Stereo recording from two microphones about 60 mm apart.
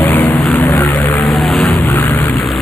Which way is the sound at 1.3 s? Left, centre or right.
Centre.